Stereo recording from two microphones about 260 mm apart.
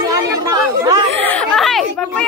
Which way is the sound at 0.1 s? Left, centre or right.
Centre.